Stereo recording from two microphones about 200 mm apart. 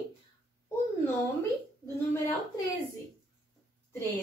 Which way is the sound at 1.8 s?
15° left (ahead or behind).